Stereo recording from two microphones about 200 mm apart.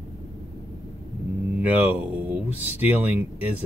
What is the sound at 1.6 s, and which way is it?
Speech, 5° right (ahead or behind).